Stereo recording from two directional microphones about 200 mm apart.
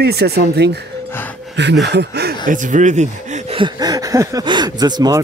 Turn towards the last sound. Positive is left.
turn(degrees=-20)  # may be behind; listen again after turning